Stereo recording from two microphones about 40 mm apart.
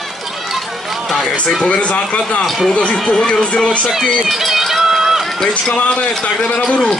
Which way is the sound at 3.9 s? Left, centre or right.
Centre.